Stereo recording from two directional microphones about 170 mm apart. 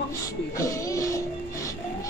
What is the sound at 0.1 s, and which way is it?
Music, 20° left (ahead or behind).